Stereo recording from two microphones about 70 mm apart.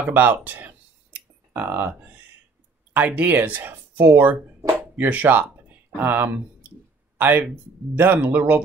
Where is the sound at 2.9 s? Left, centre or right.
Right.